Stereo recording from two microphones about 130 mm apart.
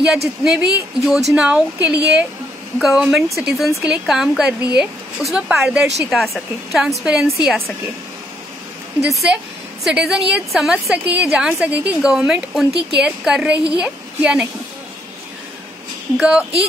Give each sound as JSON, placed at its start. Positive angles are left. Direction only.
{"t": 0.0, "sound": "a woman's voice", "side_deg": -5}
{"t": 9.0, "sound": "a woman's voice", "side_deg": -5}
{"t": 16.2, "sound": "speech", "side_deg": -10}